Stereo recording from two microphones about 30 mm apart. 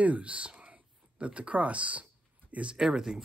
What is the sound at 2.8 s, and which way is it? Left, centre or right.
Speech, centre.